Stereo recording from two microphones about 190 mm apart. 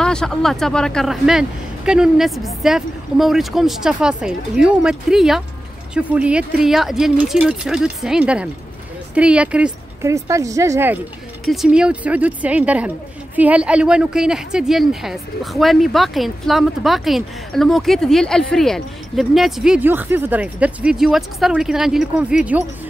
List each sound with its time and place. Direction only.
0.0 s a woman's voice: 5° left (ahead or behind)
10.2 s speech: 15° right (ahead or behind)
11.4 s speech: centre (ahead or behind)